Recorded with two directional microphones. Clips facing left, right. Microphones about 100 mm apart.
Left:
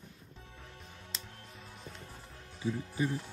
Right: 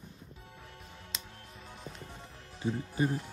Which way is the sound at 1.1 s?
90° right.